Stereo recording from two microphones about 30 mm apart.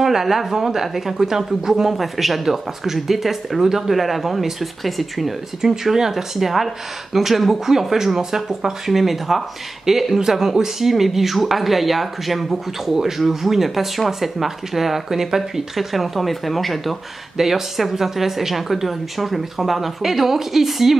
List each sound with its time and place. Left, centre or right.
0.0 s speech: centre
2.0 s speech: centre
5.6 s speech: centre
17.4 s speech: centre